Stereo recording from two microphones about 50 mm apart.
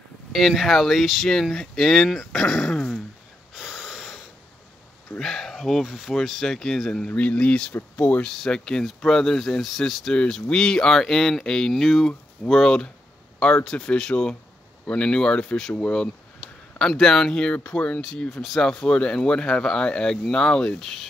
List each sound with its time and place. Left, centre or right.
0.3 s speech: centre
3.5 s wheeze: centre
5.2 s speech: centre
7.1 s speech: left
8.2 s speech: centre
10.1 s speech: centre